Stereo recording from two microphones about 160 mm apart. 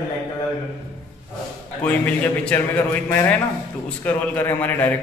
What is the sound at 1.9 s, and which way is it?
A man's voice, 10° left (ahead or behind).